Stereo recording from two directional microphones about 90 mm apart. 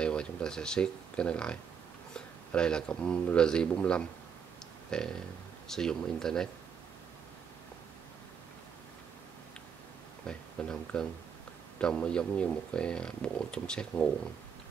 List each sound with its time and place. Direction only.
0.0 s speech: 10° left (ahead or behind)
10.2 s speech: 10° left (ahead or behind)